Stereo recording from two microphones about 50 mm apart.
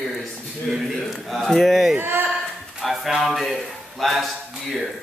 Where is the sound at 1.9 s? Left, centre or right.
Right.